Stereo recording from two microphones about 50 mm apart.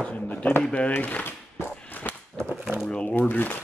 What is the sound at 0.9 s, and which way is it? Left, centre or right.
Speech, left.